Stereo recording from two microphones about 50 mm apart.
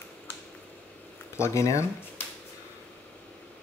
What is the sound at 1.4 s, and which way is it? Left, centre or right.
Speech, left.